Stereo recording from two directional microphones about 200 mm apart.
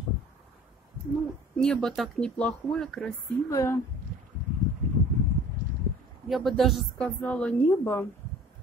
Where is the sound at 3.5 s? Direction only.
15° left (ahead or behind).